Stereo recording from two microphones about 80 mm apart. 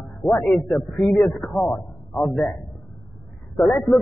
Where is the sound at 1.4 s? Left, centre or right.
Centre.